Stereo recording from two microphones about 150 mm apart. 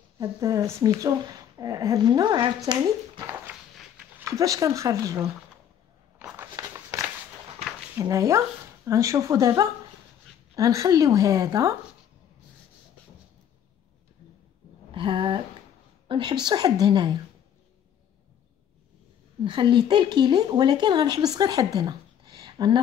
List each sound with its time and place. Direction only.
0.2 s speech: 20° right (ahead or behind)
4.4 s speech: 20° right (ahead or behind)
6.1 s a sound: 15° right (ahead or behind)
8.0 s speech: 20° right (ahead or behind)
14.9 s a sound: 35° right (ahead or behind)
16.1 s speech: 30° right (ahead or behind)
19.4 s speech: 30° right (ahead or behind)